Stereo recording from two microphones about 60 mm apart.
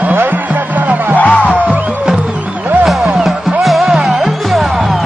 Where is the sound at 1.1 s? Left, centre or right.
Left.